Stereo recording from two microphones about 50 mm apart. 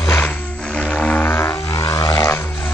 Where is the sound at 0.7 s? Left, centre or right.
Left.